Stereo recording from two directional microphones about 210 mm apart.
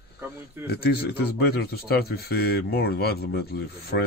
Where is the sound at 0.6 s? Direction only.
50° left (ahead or behind).